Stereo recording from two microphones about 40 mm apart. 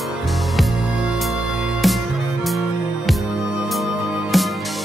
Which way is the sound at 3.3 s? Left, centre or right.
Centre.